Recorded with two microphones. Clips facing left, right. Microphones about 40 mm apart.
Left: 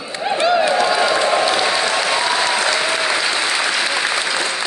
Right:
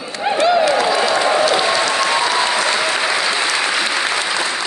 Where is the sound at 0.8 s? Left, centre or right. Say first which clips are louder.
Even; centre.